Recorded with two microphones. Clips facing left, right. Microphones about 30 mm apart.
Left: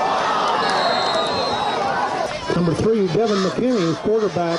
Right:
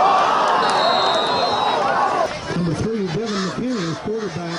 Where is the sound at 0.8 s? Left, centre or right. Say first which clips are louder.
Right 2 dB; centre.